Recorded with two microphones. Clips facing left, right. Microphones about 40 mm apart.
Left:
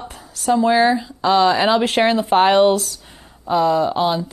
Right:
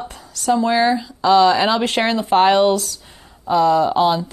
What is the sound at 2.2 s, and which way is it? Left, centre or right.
Speech, centre.